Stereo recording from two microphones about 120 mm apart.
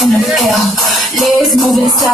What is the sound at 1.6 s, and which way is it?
Music, centre (ahead or behind).